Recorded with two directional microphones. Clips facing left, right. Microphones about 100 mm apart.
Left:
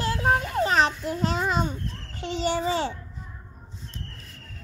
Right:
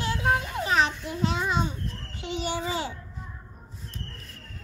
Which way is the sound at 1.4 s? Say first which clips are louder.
Left 2 dB; 40° left (ahead or behind).